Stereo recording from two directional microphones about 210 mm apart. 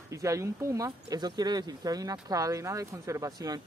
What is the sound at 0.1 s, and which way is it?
Speech, 15° right (ahead or behind).